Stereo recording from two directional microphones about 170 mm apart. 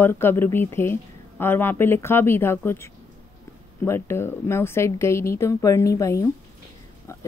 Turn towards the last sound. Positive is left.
turn(degrees=15)  # may be behind; listen again after turning